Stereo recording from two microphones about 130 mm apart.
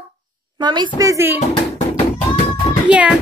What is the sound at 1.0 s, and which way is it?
Speech, 20° right (ahead or behind).